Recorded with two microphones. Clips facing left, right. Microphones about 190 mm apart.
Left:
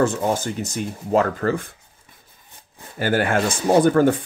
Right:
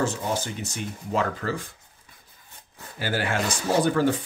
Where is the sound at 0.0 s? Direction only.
45° left (ahead or behind).